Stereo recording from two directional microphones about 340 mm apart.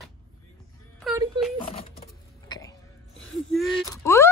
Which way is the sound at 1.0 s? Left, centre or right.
Centre.